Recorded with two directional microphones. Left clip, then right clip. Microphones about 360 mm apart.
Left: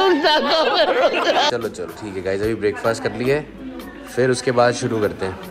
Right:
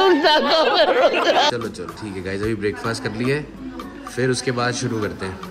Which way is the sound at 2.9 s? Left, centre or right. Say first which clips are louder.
Left 3 dB; centre.